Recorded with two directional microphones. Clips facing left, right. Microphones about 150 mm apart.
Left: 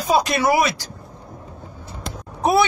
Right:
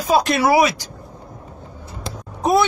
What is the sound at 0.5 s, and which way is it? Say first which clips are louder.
Speech: right 4 dB; 15° right (ahead or behind).